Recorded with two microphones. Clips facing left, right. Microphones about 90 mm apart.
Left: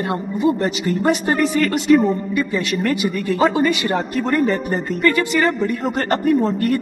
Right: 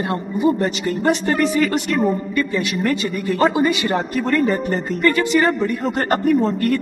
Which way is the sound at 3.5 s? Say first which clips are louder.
Even; 20° right (ahead or behind).